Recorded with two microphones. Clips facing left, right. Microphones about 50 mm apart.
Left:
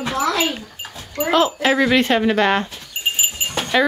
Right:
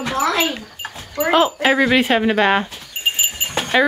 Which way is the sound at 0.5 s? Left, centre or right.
Right.